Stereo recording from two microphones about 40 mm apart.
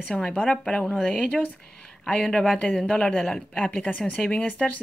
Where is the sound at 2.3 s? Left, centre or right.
Centre.